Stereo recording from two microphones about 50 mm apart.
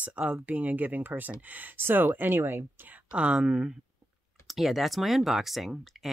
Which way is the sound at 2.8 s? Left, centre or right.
Right.